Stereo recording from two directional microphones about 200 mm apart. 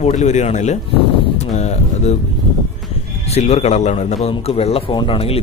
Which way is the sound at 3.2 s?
30° left (ahead or behind).